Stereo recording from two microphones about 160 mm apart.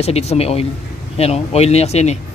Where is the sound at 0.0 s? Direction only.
40° left (ahead or behind).